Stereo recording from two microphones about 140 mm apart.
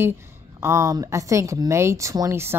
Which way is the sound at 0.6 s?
20° right (ahead or behind).